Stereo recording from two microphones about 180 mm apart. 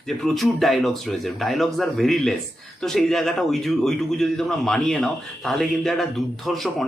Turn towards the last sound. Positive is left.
turn(degrees=0)  # may be behind; listen again after turning